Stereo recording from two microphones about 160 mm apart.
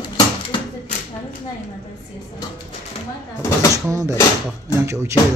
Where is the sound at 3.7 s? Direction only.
20° right (ahead or behind).